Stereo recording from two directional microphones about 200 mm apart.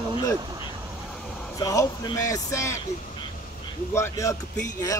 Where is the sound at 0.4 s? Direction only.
20° right (ahead or behind).